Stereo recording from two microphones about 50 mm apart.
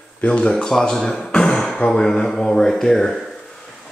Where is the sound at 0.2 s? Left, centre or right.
Centre.